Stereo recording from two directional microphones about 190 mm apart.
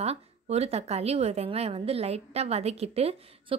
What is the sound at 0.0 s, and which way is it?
A woman's voice, 35° right (ahead or behind).